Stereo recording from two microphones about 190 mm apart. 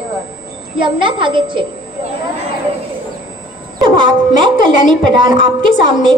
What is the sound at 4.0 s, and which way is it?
A woman's voice, 25° right (ahead or behind).